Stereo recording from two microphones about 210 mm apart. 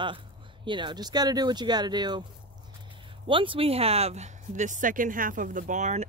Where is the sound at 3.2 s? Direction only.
25° right (ahead or behind).